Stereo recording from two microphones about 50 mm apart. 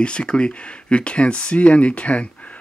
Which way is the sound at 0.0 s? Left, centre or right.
Left.